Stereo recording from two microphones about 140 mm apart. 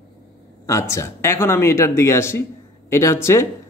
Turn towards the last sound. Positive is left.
turn(degrees=20)  # may be behind; listen again after turning